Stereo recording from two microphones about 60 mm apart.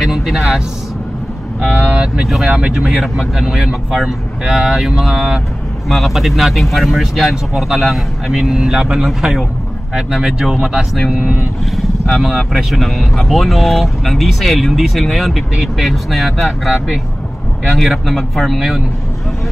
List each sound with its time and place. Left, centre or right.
0.0 s speech: centre
1.6 s speech: centre
2.2 s speech: centre
5.9 s speech: centre